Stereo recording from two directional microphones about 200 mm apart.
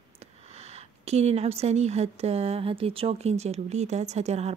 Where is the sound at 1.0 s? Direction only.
30° right (ahead or behind).